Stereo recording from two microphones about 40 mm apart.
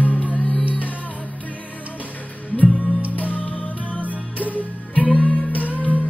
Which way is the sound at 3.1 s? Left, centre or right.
Left.